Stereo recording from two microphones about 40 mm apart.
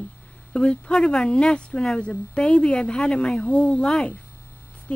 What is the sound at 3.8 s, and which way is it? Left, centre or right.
Speech, centre.